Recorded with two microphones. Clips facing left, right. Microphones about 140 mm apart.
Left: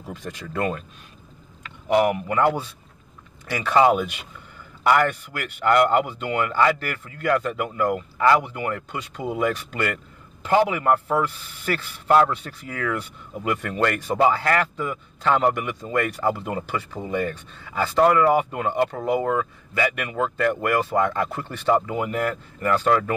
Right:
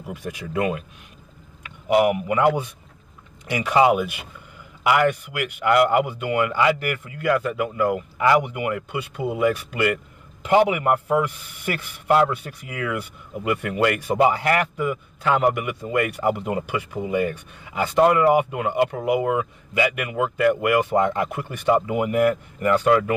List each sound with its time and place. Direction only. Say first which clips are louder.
0.0 s a man's voice: right 2 dB; 10° right (ahead or behind)
1.9 s a man's voice: right 1 dB; 10° right (ahead or behind)